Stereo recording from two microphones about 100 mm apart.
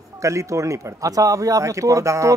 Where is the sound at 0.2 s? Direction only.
30° right (ahead or behind).